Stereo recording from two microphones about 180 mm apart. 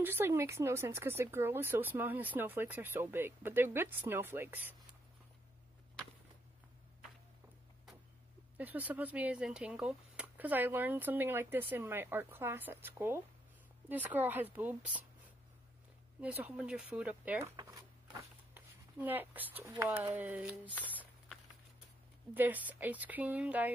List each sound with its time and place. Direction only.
0.0 s speech: 10° right (ahead or behind)
8.5 s speech: 10° right (ahead or behind)
16.2 s speech: 5° right (ahead or behind)
17.6 s a sound: 20° right (ahead or behind)
18.5 s speech: 10° right (ahead or behind)
22.3 s speech: 10° right (ahead or behind)